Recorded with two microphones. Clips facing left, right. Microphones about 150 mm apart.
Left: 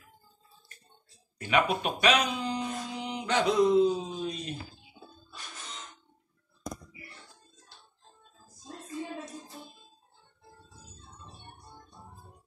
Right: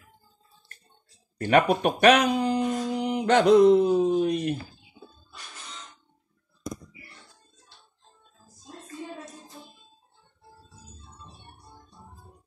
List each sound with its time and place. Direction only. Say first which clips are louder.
1.4 s speech: right 6 dB; 55° right (ahead or behind)